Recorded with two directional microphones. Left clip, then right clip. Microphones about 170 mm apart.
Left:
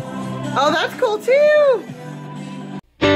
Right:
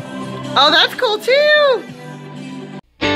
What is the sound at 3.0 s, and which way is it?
Music, centre (ahead or behind).